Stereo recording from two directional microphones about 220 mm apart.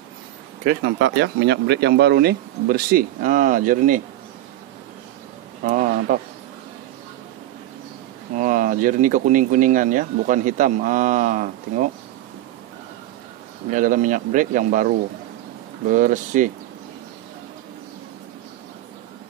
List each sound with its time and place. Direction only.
0.7 s speech: 45° right (ahead or behind)
5.6 s a sound: 35° right (ahead or behind)
8.4 s speech: 35° right (ahead or behind)
13.7 s speech: 35° right (ahead or behind)